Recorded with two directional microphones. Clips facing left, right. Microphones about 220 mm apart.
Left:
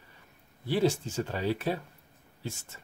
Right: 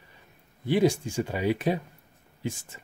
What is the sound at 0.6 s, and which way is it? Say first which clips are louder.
Speech: right 4 dB; 15° right (ahead or behind).